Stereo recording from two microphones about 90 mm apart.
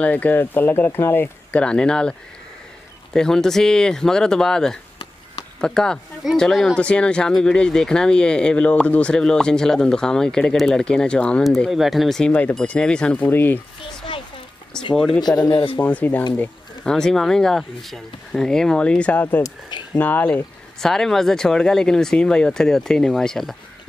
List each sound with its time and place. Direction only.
0.0 s speech: 20° left (ahead or behind); by 12.3 s centre (ahead or behind)
12.3 s speech: 15° left (ahead or behind)
15.0 s speech: 5° left (ahead or behind)
15.2 s a man's voice: 50° left (ahead or behind)
15.5 s speech: 65° left (ahead or behind)
15.8 s speech: 20° left (ahead or behind)
20.8 s speech: 5° left (ahead or behind)